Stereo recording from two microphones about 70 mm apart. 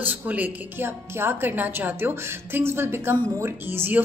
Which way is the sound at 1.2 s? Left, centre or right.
Right.